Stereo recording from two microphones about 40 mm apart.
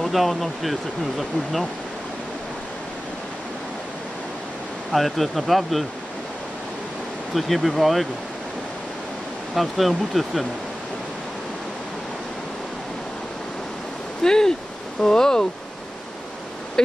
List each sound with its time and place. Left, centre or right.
0.0 s speech: centre
4.9 s speech: centre
7.3 s speech: centre
9.6 s speech: centre
14.2 s speech: centre